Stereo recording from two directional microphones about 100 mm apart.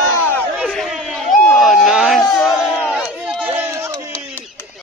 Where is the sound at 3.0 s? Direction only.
15° right (ahead or behind).